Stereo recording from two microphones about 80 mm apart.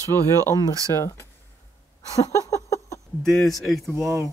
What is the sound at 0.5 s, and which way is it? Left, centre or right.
Speech, left.